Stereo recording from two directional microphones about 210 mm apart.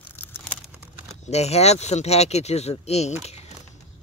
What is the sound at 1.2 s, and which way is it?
Speech, 30° left (ahead or behind).